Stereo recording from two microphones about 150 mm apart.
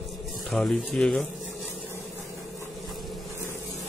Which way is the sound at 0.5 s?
Centre (ahead or behind).